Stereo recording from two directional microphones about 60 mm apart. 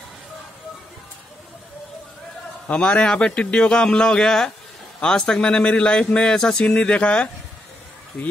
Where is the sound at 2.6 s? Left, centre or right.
Left.